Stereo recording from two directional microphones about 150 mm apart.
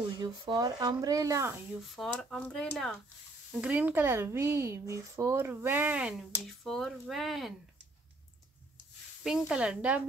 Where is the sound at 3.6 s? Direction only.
10° right (ahead or behind).